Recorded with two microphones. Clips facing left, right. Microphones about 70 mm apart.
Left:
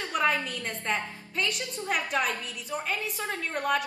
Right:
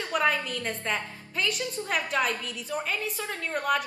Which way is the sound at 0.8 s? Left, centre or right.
Centre.